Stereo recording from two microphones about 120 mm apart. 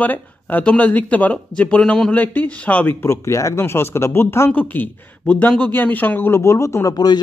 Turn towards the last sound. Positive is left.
turn(degrees=30)  # may be behind; listen again after turning